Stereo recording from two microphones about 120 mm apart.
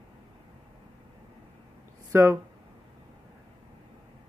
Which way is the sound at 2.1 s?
20° right (ahead or behind).